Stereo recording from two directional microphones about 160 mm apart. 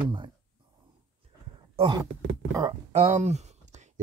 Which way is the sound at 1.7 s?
30° right (ahead or behind).